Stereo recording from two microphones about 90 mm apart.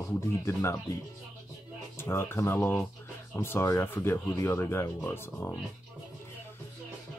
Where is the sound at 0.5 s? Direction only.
30° left (ahead or behind).